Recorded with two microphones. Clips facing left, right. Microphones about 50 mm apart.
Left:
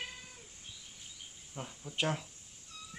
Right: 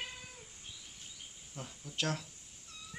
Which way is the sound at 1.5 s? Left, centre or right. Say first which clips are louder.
Left 3 dB; centre.